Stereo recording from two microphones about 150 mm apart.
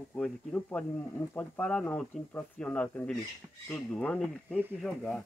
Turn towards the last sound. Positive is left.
turn(degrees=5)  # may be behind; listen again after turning